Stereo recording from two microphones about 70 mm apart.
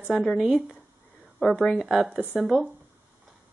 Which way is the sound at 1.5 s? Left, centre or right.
Centre.